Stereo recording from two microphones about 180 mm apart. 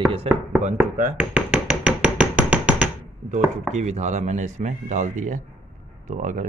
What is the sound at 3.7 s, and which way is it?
Speech, 40° right (ahead or behind).